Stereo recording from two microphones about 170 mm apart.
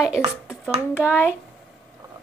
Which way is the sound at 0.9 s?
10° left (ahead or behind).